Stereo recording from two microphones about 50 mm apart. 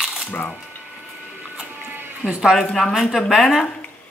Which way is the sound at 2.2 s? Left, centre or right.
Centre.